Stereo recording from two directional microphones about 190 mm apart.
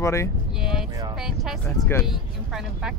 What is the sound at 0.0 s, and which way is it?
Speech, 15° left (ahead or behind).